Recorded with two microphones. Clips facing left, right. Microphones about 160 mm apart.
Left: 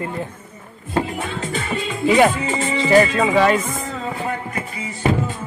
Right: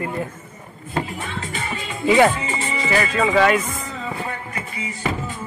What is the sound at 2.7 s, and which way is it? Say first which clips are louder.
Music: left 8 dB; 30° left (ahead or behind).